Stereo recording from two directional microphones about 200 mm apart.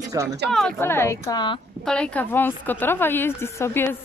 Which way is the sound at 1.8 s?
5° left (ahead or behind).